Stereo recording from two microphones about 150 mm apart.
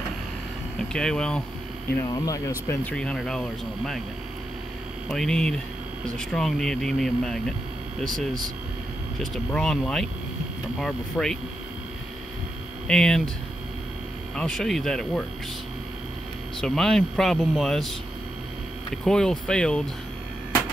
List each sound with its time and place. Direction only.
0.9 s speech: 5° left (ahead or behind)
2.0 s speech: 20° left (ahead or behind)
2.7 s speech: 10° left (ahead or behind)
5.1 s speech: 5° left (ahead or behind)
9.2 s speech: centre (ahead or behind)
12.8 s speech: 5° left (ahead or behind)
14.3 s speech: 5° left (ahead or behind)
16.6 s speech: 5° left (ahead or behind)
19.0 s speech: 5° left (ahead or behind)